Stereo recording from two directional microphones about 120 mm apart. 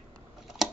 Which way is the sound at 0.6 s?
Centre (ahead or behind).